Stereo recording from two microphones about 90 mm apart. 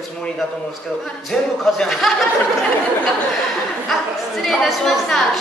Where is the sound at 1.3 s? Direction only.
5° left (ahead or behind).